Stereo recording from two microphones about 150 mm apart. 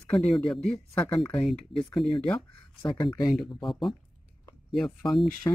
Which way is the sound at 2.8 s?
35° left (ahead or behind).